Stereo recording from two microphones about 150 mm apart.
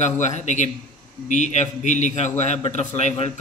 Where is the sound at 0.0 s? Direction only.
50° left (ahead or behind).